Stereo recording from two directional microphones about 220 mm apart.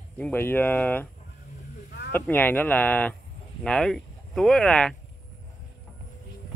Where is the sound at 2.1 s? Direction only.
10° left (ahead or behind).